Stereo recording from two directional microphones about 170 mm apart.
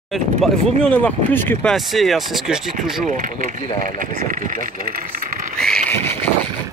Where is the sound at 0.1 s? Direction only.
5° left (ahead or behind).